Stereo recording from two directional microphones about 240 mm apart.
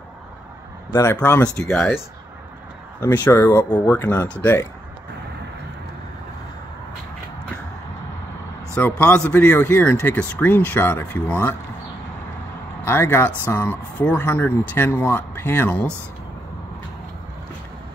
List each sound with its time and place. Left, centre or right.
0.9 s speech: centre
3.0 s speech: centre
8.7 s speech: centre
12.8 s speech: centre